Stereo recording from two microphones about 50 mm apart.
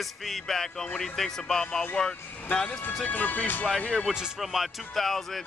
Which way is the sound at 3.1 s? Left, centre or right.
Left.